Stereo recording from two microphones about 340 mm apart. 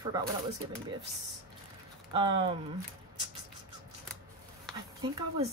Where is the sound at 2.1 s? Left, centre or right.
Centre.